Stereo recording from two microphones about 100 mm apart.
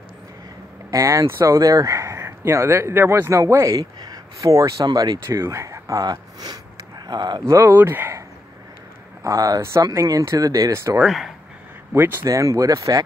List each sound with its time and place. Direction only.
0.8 s speech: 30° right (ahead or behind)
5.2 s speech: 30° right (ahead or behind); by 7.4 s 45° right (ahead or behind)
7.4 s speech: 25° right (ahead or behind)
9.2 s speech: 35° right (ahead or behind)
11.1 s speech: 5° right (ahead or behind)
11.9 s speech: 25° right (ahead or behind)